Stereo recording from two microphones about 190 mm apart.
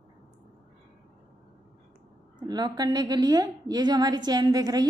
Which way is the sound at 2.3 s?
20° right (ahead or behind).